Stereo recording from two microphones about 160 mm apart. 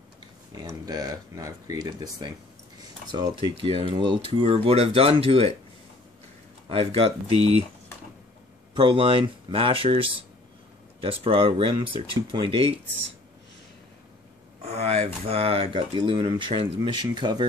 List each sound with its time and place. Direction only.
0.6 s speech: 25° right (ahead or behind)
6.7 s speech: 35° right (ahead or behind)
8.7 s speech: 30° right (ahead or behind)
14.6 s speech: 40° right (ahead or behind)